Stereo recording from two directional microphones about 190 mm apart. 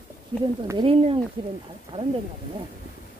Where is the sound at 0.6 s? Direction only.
25° right (ahead or behind).